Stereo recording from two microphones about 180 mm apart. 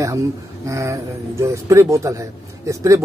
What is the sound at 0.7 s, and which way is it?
Speech, 15° right (ahead or behind).